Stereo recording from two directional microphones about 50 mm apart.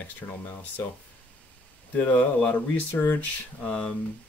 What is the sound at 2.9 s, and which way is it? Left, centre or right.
Speech, left.